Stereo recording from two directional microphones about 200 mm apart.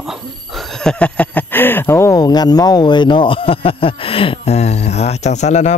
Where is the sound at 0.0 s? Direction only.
Centre (ahead or behind).